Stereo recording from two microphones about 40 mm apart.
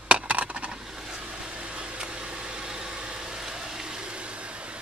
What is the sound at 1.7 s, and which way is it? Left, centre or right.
Vehicle, right.